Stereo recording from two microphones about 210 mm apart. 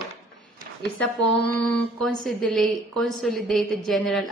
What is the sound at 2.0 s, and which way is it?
A woman's voice, centre (ahead or behind).